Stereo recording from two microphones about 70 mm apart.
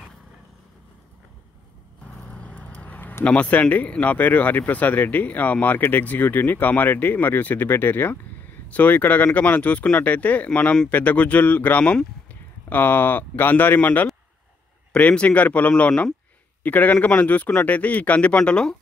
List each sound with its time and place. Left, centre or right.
2.1 s vehicle: centre
3.3 s speech: centre